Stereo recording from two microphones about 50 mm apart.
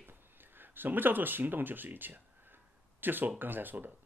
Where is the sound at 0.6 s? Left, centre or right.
Right.